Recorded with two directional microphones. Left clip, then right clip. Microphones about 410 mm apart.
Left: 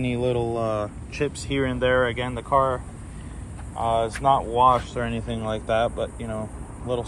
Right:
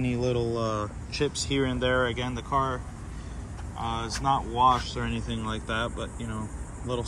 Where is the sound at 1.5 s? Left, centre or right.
Left.